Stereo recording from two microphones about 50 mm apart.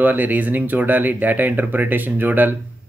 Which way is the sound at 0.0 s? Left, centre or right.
Right.